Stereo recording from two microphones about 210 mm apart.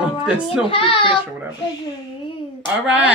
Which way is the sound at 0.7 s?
25° left (ahead or behind).